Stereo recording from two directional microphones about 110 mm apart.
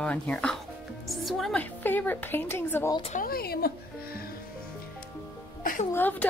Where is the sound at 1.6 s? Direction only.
15° left (ahead or behind).